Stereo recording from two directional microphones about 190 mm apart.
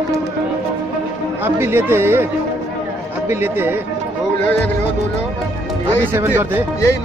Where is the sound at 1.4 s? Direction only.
10° right (ahead or behind).